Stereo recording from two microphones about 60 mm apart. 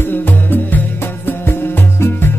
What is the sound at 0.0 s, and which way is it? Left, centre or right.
Music, left.